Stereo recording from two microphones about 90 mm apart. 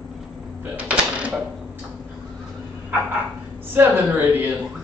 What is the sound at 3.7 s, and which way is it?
Speech, 25° right (ahead or behind).